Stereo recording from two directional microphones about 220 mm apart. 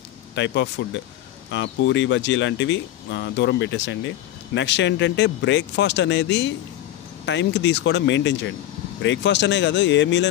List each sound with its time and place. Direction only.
0.3 s speech: 55° left (ahead or behind)